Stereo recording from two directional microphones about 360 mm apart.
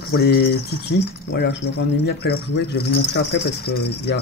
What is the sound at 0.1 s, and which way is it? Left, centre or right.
Speech, left.